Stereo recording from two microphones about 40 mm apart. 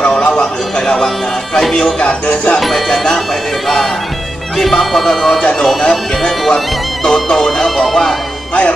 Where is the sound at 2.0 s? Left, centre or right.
Left.